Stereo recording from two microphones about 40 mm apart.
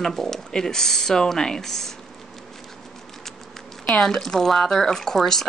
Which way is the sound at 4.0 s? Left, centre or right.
Centre.